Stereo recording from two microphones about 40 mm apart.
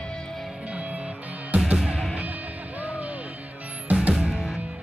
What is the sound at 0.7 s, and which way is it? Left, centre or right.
Music, right.